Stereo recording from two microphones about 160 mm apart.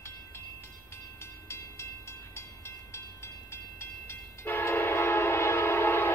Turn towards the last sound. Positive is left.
turn(degrees=15)  # may be behind; listen again after turning